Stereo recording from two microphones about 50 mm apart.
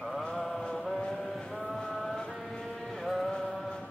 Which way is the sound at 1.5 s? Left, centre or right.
Centre.